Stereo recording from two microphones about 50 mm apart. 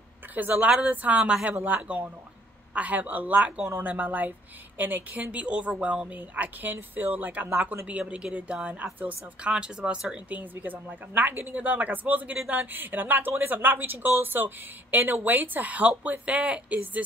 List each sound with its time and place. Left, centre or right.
0.3 s speech: right
6.1 s speech: right
8.1 s speech: right
10.3 s speech: right